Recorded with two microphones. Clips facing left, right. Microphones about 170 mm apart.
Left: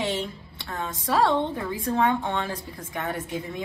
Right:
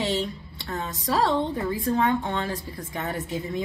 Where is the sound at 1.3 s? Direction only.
20° left (ahead or behind).